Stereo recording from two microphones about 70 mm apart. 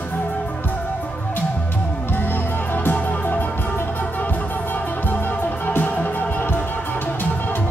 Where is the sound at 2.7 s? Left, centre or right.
Left.